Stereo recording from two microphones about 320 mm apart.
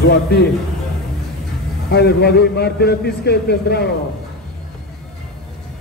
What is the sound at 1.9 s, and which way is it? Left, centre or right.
A man's voice, left.